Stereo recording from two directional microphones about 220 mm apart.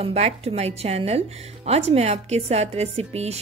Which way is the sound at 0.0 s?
30° right (ahead or behind).